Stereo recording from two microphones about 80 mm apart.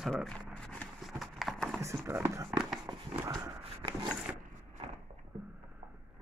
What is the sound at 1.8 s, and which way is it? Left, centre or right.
Speech, right.